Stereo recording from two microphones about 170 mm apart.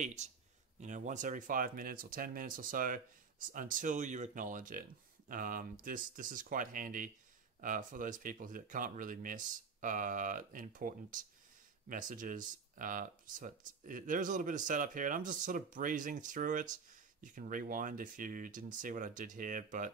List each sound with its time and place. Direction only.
0.0 s speech: 45° right (ahead or behind)